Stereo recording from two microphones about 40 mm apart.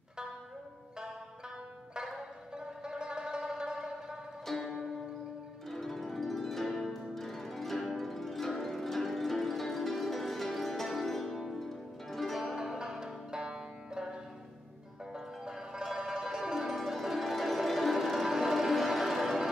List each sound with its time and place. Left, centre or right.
2.0 s music: centre
4.5 s music: centre
12.5 s music: centre
15.1 s music: centre
15.8 s zither: centre
16.6 s music: centre